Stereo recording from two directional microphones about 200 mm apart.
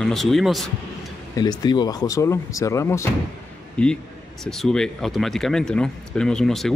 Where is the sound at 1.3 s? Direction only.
20° left (ahead or behind).